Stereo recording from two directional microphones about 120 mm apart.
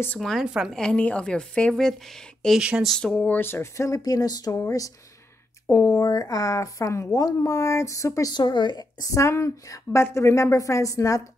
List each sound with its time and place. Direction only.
0.2 s a woman's voice: centre (ahead or behind); by 11.2 s 30° left (ahead or behind)